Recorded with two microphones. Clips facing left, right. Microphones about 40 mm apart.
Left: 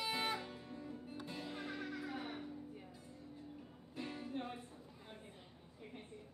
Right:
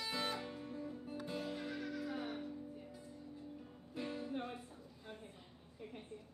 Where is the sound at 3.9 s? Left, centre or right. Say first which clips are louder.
Right 3 dB; centre.